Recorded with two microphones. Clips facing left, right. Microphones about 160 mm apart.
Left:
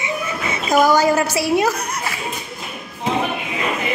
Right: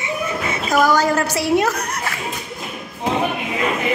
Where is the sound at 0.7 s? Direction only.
15° left (ahead or behind).